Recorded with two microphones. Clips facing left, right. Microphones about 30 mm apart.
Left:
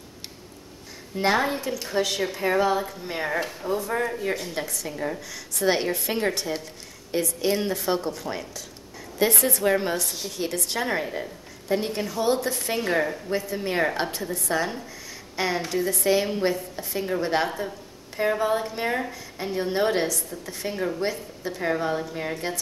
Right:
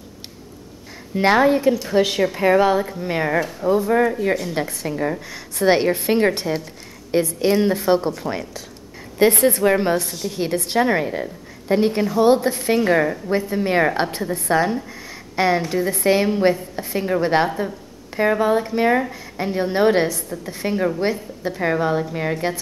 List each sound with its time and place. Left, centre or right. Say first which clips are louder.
1.1 s a woman's voice: right 8 dB; right
2.7 s a woman's voice: right 6 dB; centre
4.6 s a woman's voice: right 7 dB; right
9.2 s a woman's voice: right 7 dB; right
9.6 s a woman's voice: right 6 dB; right
10.0 s a woman's voice: right 5 dB; centre
10.3 s a woman's voice: right 9 dB; right
12.5 s a woman's voice: right 7 dB; centre
15.3 s a woman's voice: right 7 dB; centre